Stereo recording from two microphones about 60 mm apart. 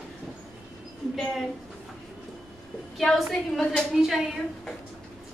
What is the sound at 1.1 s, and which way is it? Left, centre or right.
Speech, centre.